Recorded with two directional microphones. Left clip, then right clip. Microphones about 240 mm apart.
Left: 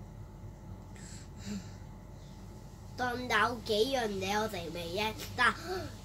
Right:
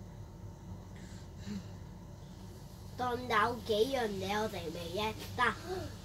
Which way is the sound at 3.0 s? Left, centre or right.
Centre.